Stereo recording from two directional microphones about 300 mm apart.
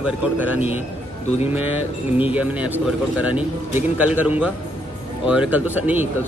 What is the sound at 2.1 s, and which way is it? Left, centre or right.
Speech, centre.